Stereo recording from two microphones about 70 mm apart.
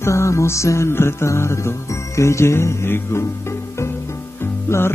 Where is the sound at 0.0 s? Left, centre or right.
Left.